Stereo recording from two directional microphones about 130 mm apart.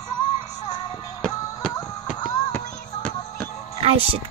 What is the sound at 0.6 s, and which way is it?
Music, 30° left (ahead or behind).